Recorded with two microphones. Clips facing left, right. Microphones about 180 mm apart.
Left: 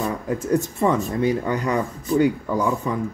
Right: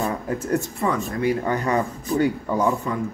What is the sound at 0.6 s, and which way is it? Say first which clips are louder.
Speech: left 3 dB; 20° left (ahead or behind).